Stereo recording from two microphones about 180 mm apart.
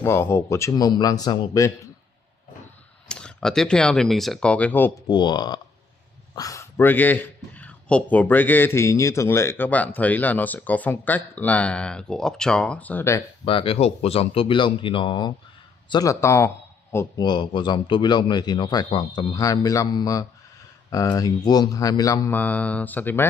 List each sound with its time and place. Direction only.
0.0 s speech: 15° left (ahead or behind)
3.1 s speech: 5° left (ahead or behind)
5.0 s a man's voice: 25° left (ahead or behind)
13.5 s a man's voice: 30° left (ahead or behind); by 23.2 s 10° left (ahead or behind)